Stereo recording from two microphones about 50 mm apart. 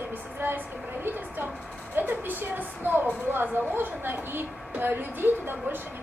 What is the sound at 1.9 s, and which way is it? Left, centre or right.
A woman's voice, right.